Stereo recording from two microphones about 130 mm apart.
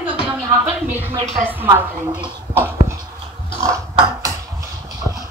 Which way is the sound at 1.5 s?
15° right (ahead or behind).